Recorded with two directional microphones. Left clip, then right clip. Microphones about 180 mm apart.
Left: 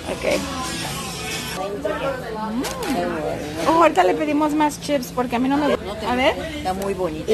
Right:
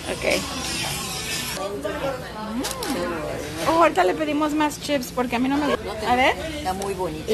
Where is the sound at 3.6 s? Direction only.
10° left (ahead or behind).